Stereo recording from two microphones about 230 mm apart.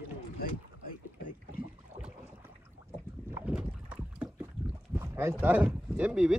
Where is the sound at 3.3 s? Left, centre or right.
Centre.